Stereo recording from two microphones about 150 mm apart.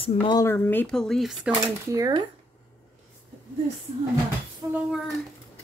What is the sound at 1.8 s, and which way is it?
Speech, 25° right (ahead or behind).